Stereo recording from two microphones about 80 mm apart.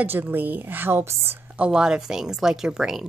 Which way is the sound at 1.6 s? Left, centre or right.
Centre.